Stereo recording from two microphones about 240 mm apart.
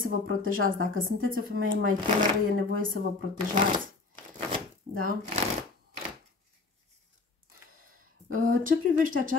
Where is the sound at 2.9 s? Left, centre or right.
Right.